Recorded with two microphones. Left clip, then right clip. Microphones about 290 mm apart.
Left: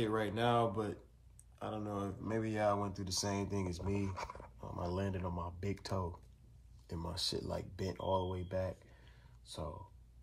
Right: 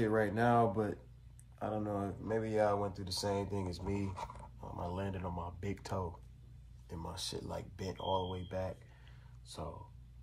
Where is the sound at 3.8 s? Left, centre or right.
Right.